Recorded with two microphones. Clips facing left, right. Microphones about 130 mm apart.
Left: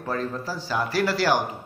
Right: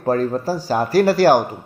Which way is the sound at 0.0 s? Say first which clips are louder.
Right 10 dB; 40° right (ahead or behind).